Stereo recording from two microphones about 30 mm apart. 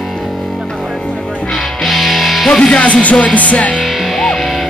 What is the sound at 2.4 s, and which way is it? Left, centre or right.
Music, centre.